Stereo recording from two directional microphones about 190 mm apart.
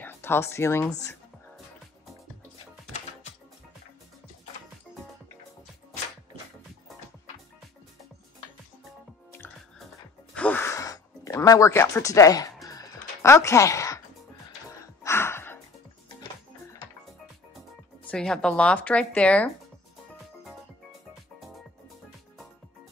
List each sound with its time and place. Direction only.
0.0 s speech: 10° left (ahead or behind)
10.3 s sigh: 10° left (ahead or behind)
12.6 s music: 15° left (ahead or behind)
15.0 s music: 15° left (ahead or behind)
18.0 s speech: 5° left (ahead or behind)